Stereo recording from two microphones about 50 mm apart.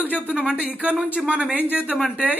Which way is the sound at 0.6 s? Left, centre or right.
Right.